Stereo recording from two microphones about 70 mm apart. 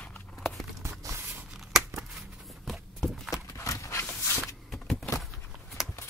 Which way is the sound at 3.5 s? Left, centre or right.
Left.